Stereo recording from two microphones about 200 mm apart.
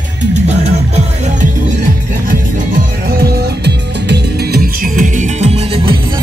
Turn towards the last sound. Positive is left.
turn(degrees=-30)  # may be behind; listen again after turning